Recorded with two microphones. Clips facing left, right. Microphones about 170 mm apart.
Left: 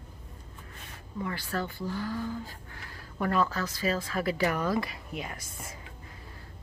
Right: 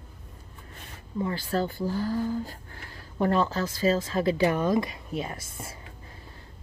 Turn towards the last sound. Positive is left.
turn(degrees=-30)  # may be behind; listen again after turning